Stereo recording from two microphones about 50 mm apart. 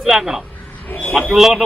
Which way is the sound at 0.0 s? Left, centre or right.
Centre.